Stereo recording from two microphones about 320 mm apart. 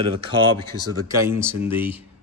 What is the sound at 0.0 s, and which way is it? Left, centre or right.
Speech, centre.